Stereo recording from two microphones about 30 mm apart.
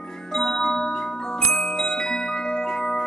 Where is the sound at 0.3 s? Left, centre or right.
Centre.